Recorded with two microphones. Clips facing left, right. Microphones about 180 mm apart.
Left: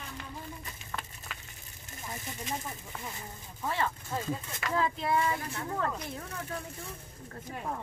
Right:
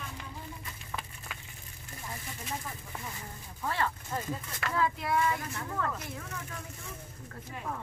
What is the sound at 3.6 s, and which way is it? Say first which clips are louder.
Speech: even; 20° left (ahead or behind).